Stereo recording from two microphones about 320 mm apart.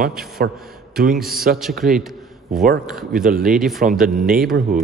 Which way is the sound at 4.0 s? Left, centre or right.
Right.